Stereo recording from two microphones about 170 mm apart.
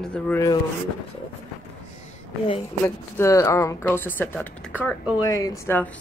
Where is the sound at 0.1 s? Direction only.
10° left (ahead or behind).